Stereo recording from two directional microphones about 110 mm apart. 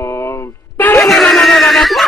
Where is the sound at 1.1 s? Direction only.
5° left (ahead or behind).